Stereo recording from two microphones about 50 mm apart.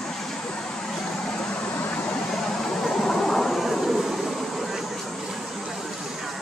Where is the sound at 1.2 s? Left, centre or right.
Left.